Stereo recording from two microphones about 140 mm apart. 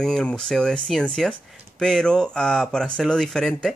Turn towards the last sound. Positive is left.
turn(degrees=5)  # may be behind; listen again after turning